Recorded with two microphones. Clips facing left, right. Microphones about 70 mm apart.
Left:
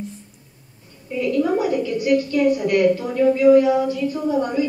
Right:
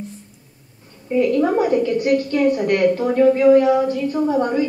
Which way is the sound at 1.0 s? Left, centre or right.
Right.